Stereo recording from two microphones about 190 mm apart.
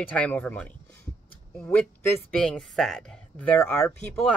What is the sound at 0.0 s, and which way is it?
Speech, 10° left (ahead or behind).